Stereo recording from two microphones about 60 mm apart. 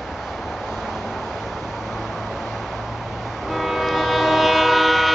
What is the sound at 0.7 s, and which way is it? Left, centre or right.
Vehicle, centre.